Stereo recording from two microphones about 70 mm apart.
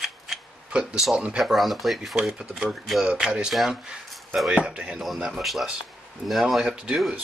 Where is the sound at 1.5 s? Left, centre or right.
Centre.